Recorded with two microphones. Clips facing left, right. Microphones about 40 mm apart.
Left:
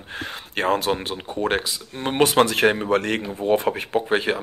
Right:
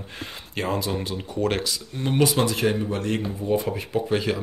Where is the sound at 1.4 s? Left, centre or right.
Left.